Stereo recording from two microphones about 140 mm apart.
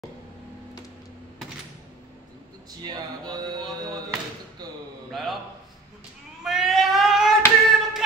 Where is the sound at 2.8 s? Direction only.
30° right (ahead or behind).